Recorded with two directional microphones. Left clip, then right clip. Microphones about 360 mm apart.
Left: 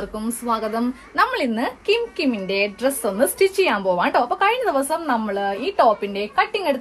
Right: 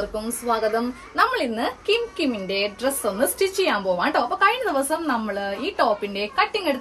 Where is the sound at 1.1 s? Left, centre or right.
Left.